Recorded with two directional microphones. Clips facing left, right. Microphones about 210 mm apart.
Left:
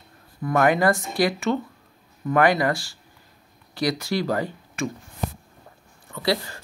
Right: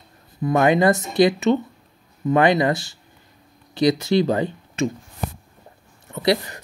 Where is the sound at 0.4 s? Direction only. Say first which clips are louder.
Right 3 dB; 20° right (ahead or behind).